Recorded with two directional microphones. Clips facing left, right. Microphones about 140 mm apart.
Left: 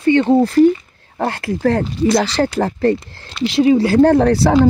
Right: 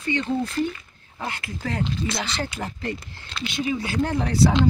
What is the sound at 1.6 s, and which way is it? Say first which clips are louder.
Speech: left 12 dB; 60° left (ahead or behind).